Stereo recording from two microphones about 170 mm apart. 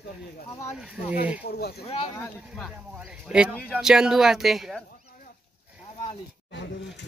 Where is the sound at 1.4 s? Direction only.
70° left (ahead or behind).